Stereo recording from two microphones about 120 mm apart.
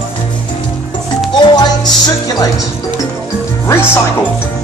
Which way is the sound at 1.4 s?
40° left (ahead or behind).